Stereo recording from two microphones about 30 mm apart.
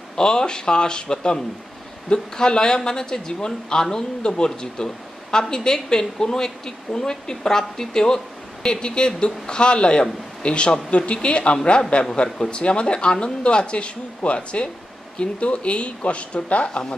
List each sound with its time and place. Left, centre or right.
0.1 s a woman's voice: left
8.6 s speech: left
10.9 s speech: left
11.2 s speech: left